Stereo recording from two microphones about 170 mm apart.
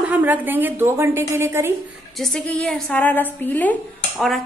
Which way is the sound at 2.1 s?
Centre (ahead or behind).